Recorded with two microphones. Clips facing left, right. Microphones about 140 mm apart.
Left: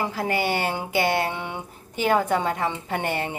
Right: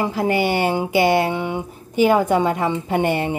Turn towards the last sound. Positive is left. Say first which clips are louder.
# right 7 dB
turn(degrees=-15)  # may be behind; listen again after turning